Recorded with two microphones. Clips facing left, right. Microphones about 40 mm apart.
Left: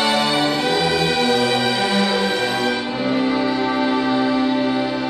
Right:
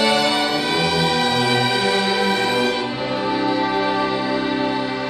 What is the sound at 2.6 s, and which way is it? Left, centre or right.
Music, right.